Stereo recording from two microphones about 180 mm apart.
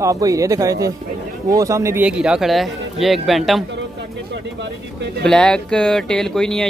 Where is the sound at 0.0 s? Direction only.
20° right (ahead or behind); by 3.6 s centre (ahead or behind).